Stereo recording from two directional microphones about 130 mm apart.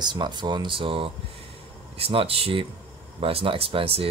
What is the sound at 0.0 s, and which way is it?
Speech, 35° right (ahead or behind).